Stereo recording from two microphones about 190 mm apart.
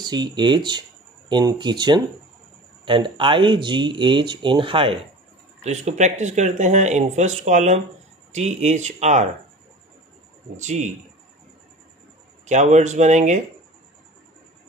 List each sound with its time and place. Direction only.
0.0 s speech: 20° right (ahead or behind)
10.5 s speech: 40° right (ahead or behind)
12.4 s speech: 40° right (ahead or behind)